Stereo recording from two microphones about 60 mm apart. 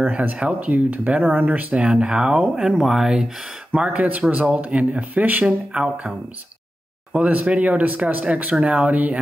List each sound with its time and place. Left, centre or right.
0.0 s speech: right; by 3.3 s centre
3.7 s speech: right
5.7 s speech: centre
7.2 s speech: right